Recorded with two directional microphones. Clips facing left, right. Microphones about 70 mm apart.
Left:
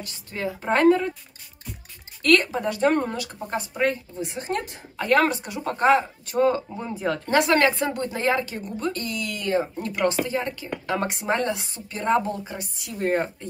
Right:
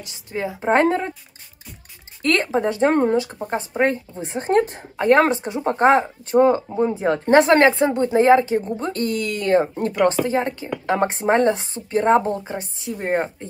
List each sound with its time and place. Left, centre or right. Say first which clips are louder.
0.0 s speech: right 3 dB; centre
2.2 s speech: right 1 dB; right
9.0 s speech: right 7 dB; right